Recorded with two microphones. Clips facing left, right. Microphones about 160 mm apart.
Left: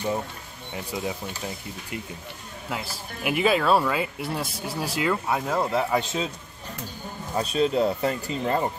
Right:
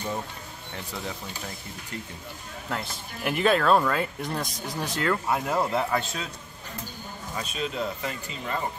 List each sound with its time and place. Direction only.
0.9 s speech: 10° left (ahead or behind)
2.7 s a man's voice: 5° left (ahead or behind)
7.3 s speech: 35° left (ahead or behind)